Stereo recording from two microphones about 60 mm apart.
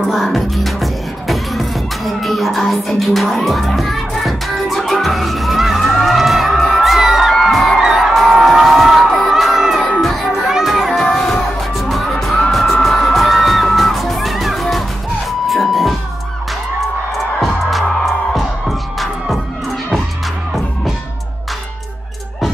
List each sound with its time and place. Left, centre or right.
0.1 s music: centre
7.8 s crowd: centre
9.8 s music: centre
17.6 s music: centre